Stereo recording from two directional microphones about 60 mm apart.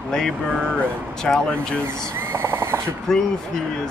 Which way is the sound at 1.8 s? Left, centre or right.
Right.